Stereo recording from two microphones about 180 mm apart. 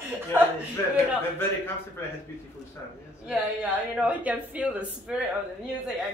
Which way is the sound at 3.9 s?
5° right (ahead or behind).